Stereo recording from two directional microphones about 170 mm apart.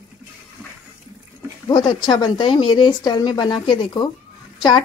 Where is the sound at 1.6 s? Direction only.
25° left (ahead or behind).